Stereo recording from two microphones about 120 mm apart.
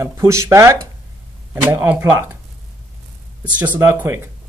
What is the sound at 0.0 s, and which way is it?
Speech, 25° right (ahead or behind).